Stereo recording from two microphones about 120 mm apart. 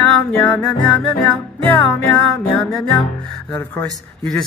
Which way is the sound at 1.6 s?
10° left (ahead or behind).